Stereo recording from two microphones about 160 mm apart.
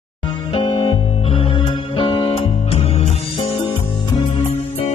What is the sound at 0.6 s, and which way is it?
Music, 30° left (ahead or behind).